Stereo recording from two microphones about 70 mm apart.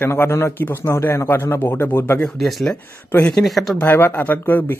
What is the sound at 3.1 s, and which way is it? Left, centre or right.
Speech, left.